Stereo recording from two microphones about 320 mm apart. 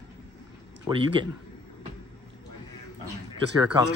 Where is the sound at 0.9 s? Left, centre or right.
Centre.